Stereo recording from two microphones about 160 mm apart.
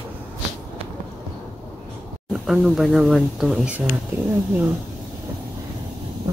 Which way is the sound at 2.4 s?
Centre (ahead or behind).